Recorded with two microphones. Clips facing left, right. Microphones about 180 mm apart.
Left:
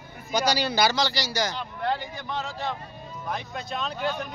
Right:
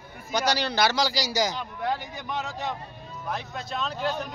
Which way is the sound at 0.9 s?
10° right (ahead or behind).